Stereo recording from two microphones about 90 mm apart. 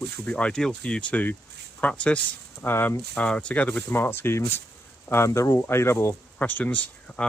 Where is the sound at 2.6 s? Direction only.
25° left (ahead or behind).